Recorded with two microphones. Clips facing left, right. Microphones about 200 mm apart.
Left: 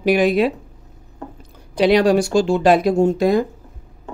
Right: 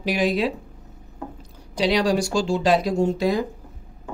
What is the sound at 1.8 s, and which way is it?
Speech, 55° left (ahead or behind).